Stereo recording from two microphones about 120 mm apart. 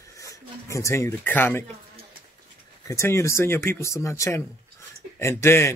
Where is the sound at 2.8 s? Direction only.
25° left (ahead or behind).